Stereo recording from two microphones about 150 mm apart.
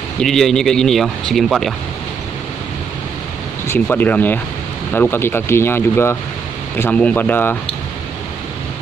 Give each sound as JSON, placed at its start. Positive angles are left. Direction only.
{"t": 0.2, "sound": "speech", "side_deg": 0}
{"t": 3.6, "sound": "speech", "side_deg": 15}